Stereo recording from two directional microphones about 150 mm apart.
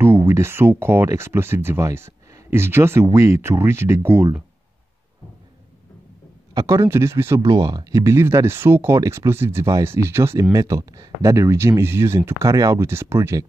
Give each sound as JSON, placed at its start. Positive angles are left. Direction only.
{"t": 0.0, "sound": "speech", "side_deg": -15}
{"t": 6.5, "sound": "speech", "side_deg": -20}
{"t": 7.4, "sound": "speech", "side_deg": -30}